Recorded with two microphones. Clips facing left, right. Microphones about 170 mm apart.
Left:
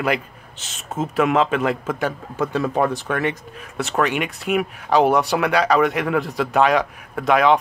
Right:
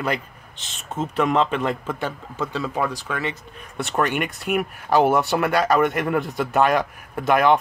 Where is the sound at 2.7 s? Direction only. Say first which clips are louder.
Left 5 dB; 25° left (ahead or behind).